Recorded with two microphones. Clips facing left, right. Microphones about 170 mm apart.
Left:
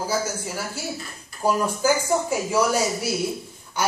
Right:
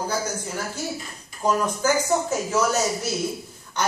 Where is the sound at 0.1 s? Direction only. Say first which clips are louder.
Left 1 dB; 5° left (ahead or behind).